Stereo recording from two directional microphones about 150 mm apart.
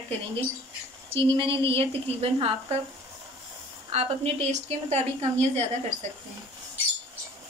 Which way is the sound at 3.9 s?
45° right (ahead or behind).